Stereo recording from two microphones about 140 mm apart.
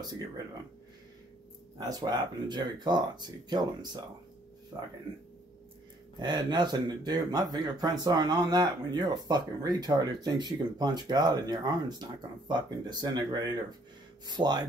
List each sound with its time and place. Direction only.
1.8 s speech: 30° right (ahead or behind)
6.1 s speech: 30° right (ahead or behind)